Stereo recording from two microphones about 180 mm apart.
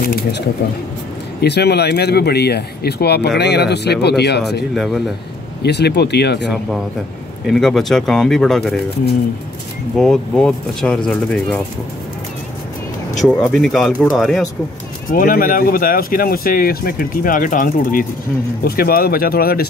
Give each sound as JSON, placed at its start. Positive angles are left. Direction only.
{"t": 0.0, "sound": "a sound", "side_deg": 55}
{"t": 1.4, "sound": "speech", "side_deg": 65}
{"t": 4.7, "sound": "speech", "side_deg": 0}
{"t": 5.6, "sound": "speech", "side_deg": 70}
{"t": 7.4, "sound": "speech", "side_deg": 0}
{"t": 9.9, "sound": "speech", "side_deg": 0}
{"t": 13.2, "sound": "speech", "side_deg": 0}
{"t": 15.0, "sound": "speech", "side_deg": 50}